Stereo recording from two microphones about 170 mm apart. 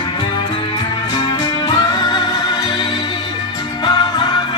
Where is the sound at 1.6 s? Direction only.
25° left (ahead or behind).